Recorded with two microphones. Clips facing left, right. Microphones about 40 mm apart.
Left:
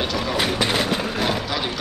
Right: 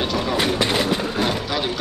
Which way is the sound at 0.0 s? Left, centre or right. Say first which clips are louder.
Right 1 dB; centre.